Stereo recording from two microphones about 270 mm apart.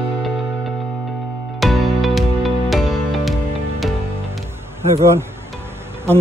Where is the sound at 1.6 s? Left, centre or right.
Centre.